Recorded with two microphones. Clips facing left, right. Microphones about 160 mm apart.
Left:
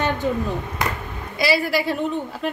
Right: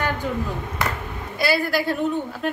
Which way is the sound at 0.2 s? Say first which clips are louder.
Left 4 dB; 25° left (ahead or behind).